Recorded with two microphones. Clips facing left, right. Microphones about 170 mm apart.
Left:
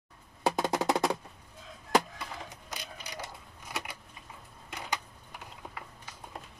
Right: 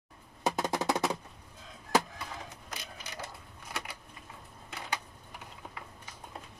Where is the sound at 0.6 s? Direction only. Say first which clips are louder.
Left 2 dB; 20° left (ahead or behind).